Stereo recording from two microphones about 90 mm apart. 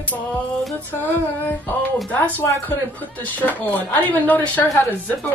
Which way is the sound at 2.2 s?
20° left (ahead or behind).